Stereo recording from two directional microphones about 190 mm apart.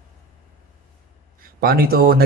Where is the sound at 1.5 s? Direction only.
50° right (ahead or behind).